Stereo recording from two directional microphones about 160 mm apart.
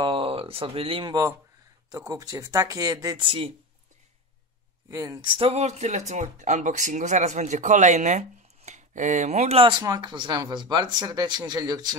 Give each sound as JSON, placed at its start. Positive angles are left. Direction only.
{"t": 0.0, "sound": "speech", "side_deg": -35}
{"t": 1.9, "sound": "speech", "side_deg": -25}
{"t": 4.8, "sound": "speech", "side_deg": -20}
{"t": 5.3, "sound": "speech", "side_deg": -40}